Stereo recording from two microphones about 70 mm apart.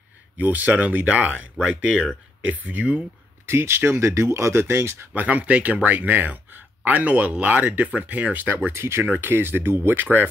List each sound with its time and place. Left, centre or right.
0.4 s speech: right
3.4 s speech: right
5.1 s speech: right
8.7 s speech: right